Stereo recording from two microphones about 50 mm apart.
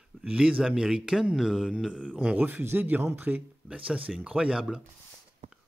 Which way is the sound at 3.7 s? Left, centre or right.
Right.